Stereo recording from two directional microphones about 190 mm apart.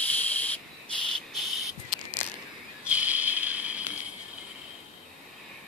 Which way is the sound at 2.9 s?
5° right (ahead or behind).